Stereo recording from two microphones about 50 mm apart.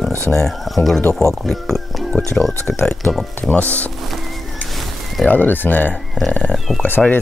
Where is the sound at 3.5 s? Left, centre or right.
Left.